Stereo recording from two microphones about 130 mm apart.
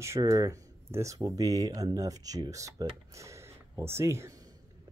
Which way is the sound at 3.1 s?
25° right (ahead or behind).